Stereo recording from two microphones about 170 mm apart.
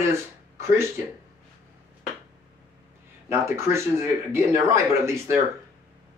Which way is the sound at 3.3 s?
15° right (ahead or behind).